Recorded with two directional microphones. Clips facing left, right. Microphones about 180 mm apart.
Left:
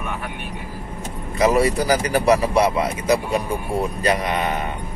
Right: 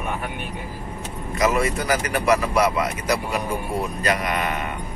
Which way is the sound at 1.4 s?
35° left (ahead or behind).